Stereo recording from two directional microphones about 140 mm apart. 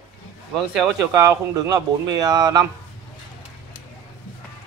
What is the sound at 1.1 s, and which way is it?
Speech, 30° right (ahead or behind).